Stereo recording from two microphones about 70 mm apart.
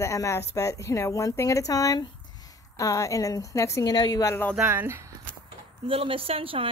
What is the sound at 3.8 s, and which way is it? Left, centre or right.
Speech, left.